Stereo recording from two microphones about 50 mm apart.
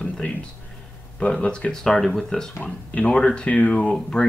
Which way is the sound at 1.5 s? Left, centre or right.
Centre.